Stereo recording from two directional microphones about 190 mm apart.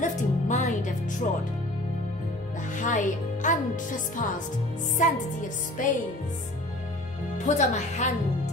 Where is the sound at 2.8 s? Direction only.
40° left (ahead or behind).